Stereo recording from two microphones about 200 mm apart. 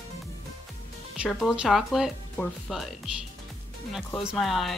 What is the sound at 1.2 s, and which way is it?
Speech, centre (ahead or behind).